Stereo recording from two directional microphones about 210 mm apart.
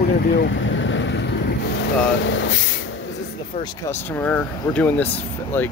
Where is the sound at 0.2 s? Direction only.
45° left (ahead or behind).